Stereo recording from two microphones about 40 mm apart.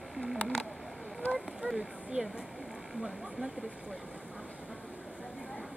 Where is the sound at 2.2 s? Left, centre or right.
Right.